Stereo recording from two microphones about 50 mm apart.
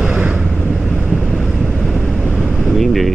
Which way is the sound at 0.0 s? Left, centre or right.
Right.